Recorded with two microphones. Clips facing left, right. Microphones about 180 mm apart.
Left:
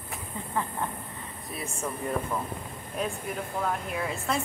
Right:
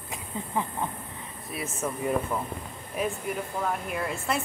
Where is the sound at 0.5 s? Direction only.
15° right (ahead or behind).